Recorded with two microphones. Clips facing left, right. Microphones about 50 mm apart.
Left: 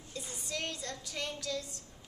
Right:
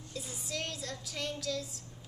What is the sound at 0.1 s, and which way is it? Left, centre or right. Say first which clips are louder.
Music: even; centre.